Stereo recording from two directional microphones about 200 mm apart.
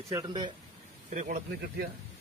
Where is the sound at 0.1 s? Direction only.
20° right (ahead or behind).